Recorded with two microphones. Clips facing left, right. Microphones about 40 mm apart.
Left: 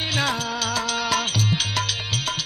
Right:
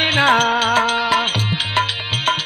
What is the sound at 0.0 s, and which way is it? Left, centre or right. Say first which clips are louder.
Music: right 10 dB; right.